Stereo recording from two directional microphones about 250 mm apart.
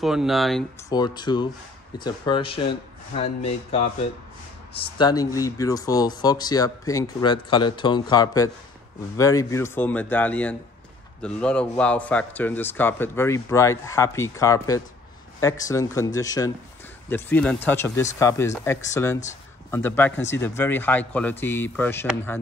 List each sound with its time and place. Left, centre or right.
0.0 s speech: centre
0.8 s speech: centre